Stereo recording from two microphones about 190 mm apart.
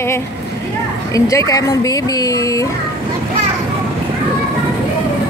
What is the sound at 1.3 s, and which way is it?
Speech, 15° left (ahead or behind).